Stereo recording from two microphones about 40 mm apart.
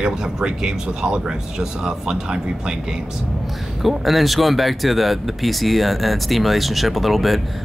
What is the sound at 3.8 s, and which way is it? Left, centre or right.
Speech, centre.